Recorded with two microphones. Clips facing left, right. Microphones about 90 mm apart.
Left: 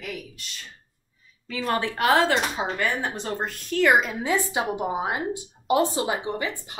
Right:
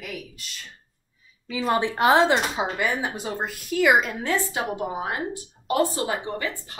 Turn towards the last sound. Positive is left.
turn(degrees=15)  # may be behind; listen again after turning